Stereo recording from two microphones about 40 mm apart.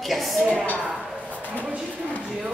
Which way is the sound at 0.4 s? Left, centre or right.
Right.